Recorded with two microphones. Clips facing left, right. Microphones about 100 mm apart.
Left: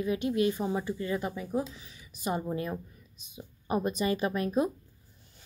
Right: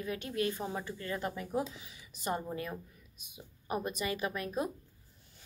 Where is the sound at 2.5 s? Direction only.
25° left (ahead or behind).